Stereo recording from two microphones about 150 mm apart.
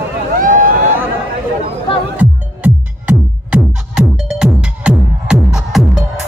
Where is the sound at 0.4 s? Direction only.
60° right (ahead or behind).